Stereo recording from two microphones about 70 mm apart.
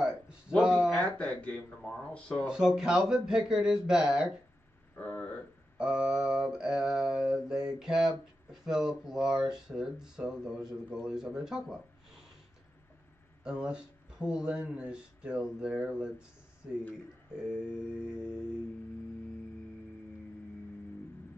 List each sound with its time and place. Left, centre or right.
0.6 s a sound: centre
0.8 s speech: centre
2.4 s mantra: centre
4.9 s speech: centre
5.8 s mantra: centre
13.4 s speech: centre
14.2 s mantra: centre